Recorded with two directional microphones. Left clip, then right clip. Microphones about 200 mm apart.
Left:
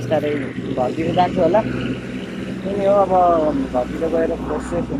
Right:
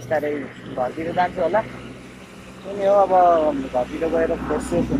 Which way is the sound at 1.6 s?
50° left (ahead or behind).